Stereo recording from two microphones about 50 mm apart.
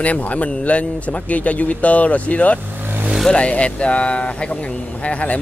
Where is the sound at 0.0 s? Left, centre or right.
Left.